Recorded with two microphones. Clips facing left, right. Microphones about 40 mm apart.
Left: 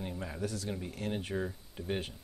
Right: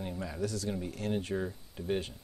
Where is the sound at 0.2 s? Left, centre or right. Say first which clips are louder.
Right 3 dB; left.